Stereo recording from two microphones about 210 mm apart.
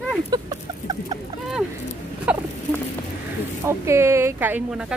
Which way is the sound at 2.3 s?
5° right (ahead or behind).